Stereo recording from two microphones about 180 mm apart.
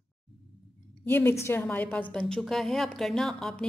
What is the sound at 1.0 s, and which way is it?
A woman's voice, 10° left (ahead or behind).